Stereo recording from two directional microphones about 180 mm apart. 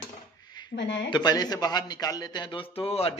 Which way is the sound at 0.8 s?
75° left (ahead or behind).